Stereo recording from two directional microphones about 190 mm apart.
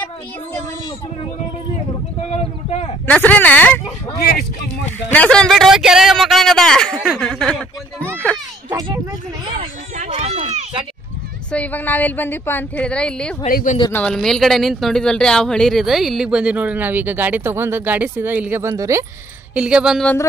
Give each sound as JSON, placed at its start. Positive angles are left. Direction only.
{"t": 2.3, "sound": "a sound", "side_deg": 35}
{"t": 3.1, "sound": "speech", "side_deg": 10}
{"t": 4.2, "sound": "speech", "side_deg": 55}
{"t": 5.1, "sound": "a man's voice", "side_deg": 5}
{"t": 8.6, "sound": "a sound", "side_deg": -20}
{"t": 9.6, "sound": "a sound", "side_deg": -35}
{"t": 11.5, "sound": "a woman's voice", "side_deg": 10}
{"t": 13.5, "sound": "speech", "side_deg": 50}
{"t": 13.9, "sound": "speech", "side_deg": 5}
{"t": 19.5, "sound": "speech", "side_deg": -5}